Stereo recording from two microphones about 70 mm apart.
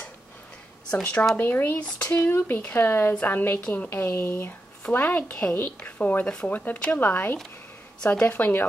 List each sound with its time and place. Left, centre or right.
0.9 s speech: centre
1.3 s speech: left